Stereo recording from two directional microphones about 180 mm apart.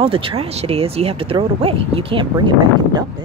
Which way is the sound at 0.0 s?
30° right (ahead or behind).